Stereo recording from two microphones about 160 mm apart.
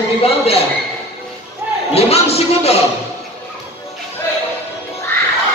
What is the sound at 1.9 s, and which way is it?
Music, 40° left (ahead or behind).